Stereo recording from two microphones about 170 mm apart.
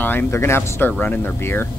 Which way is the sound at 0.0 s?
15° left (ahead or behind).